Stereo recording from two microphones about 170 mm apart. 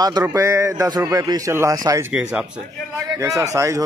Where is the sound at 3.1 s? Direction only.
20° right (ahead or behind).